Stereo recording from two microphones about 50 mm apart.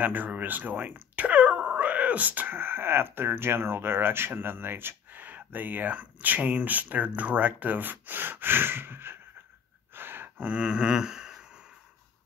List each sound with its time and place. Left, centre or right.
0.0 s speech: right
2.5 s speech: right
9.9 s gasp: right
10.3 s a sound: right